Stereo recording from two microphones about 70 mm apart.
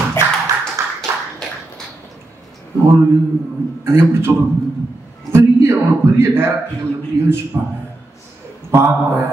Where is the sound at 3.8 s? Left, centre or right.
Right.